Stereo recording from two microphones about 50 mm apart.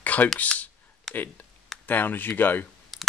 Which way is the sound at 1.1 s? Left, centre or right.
Centre.